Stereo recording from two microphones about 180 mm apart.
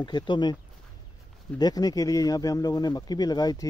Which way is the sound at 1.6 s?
20° left (ahead or behind).